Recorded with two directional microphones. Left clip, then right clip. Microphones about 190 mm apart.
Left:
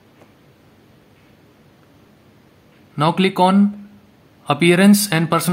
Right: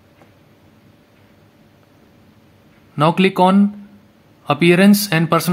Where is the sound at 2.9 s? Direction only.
5° right (ahead or behind).